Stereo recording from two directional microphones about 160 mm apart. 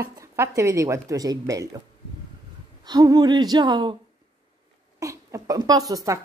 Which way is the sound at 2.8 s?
20° right (ahead or behind).